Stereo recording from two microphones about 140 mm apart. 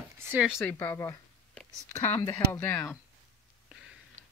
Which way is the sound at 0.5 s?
15° left (ahead or behind).